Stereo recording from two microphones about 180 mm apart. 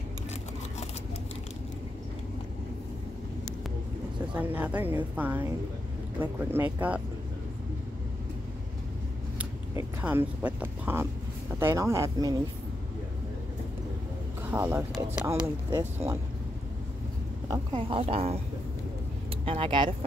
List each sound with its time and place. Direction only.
4.4 s a woman's voice: 10° right (ahead or behind)
9.4 s a woman's voice: 10° right (ahead or behind)
14.5 s a woman's voice: 10° right (ahead or behind)
17.5 s speech: 30° right (ahead or behind)
19.4 s speech: 30° right (ahead or behind)